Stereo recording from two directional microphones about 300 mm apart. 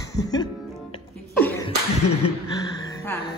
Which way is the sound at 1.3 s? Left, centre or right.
Centre.